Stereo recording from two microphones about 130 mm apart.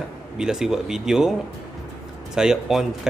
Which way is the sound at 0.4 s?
5° right (ahead or behind).